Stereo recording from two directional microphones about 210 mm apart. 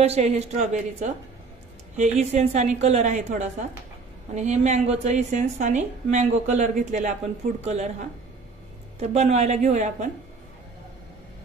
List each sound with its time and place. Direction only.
0.0 s a woman's voice: 30° right (ahead or behind)
9.0 s a woman's voice: 30° right (ahead or behind)